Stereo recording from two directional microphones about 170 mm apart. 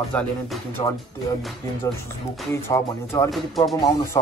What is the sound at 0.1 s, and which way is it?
Speech, 5° left (ahead or behind).